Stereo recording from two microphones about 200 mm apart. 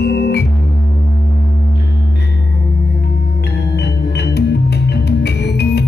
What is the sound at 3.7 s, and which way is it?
Music, 55° left (ahead or behind).